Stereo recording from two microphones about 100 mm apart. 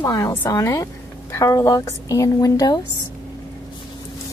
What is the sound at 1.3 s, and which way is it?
A woman's voice, 35° left (ahead or behind).